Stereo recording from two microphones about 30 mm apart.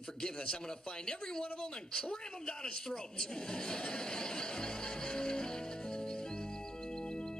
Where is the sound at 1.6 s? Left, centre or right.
Left.